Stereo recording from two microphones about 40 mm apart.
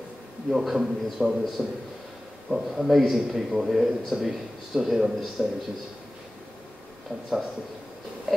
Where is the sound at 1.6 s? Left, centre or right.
Right.